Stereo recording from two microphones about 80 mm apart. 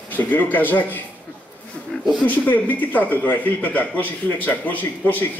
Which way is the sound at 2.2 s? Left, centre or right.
Left.